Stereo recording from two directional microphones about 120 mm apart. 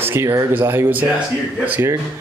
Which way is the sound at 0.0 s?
20° right (ahead or behind).